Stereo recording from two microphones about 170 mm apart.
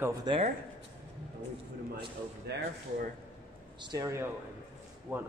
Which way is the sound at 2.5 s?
80° right.